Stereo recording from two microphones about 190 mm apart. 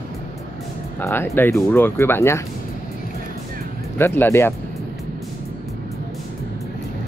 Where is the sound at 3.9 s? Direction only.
10° left (ahead or behind).